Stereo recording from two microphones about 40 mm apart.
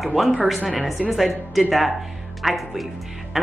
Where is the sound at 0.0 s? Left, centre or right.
Centre.